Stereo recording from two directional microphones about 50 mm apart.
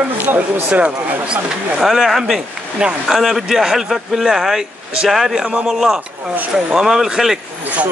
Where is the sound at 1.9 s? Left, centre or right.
Centre.